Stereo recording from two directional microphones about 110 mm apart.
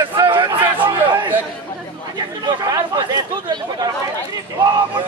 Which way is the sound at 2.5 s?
40° right (ahead or behind).